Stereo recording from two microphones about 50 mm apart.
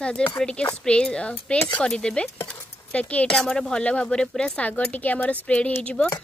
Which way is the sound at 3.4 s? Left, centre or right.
Centre.